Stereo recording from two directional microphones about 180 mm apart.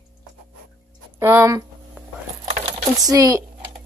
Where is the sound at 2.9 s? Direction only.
20° right (ahead or behind).